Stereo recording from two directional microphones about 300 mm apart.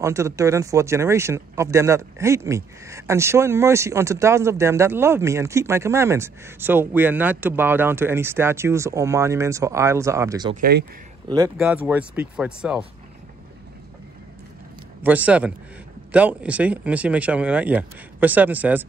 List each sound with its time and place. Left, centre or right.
0.0 s speech: centre
10.5 s speech: right
11.2 s speech: centre
15.0 s speech: centre